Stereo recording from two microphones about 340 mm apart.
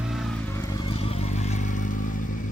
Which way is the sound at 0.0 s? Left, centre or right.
Centre.